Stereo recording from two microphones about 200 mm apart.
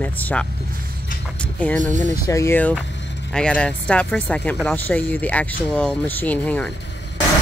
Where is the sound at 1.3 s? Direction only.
5° left (ahead or behind).